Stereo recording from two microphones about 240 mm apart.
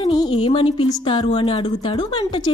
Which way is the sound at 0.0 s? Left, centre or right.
Left.